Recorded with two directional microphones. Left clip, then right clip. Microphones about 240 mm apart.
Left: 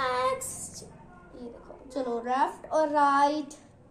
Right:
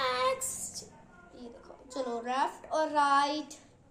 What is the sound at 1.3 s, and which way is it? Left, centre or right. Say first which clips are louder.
A woman's voice: left 5 dB; centre.